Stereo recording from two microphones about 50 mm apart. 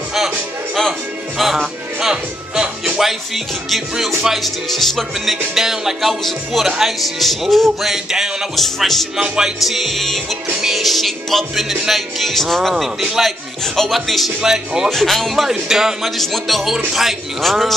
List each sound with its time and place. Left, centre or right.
1.4 s music: centre
3.0 s speech: centre
7.9 s music: centre
8.5 s speech: centre
9.1 s music: centre
9.6 s speech: centre
14.4 s music: centre
14.9 s speech: centre
15.7 s music: centre
16.2 s speech: centre
16.7 s music: centre
17.4 s speech: centre